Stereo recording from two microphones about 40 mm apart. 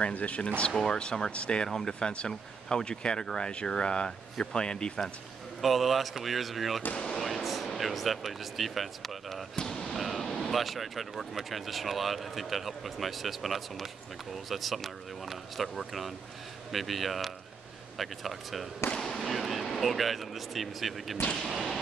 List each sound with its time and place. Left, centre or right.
0.1 s speech: left
0.7 s speech: left
1.7 s speech: centre
5.6 s speech: centre
9.6 s basketball bounce: centre
9.9 s a sound: centre
10.5 s speech: centre
18.9 s speech: centre
21.5 s a sound: centre